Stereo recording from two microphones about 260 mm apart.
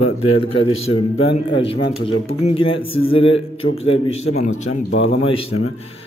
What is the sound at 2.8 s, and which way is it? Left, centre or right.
Speech, left.